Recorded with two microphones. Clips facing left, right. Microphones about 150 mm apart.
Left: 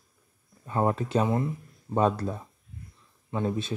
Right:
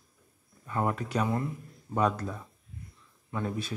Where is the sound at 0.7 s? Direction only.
25° left (ahead or behind).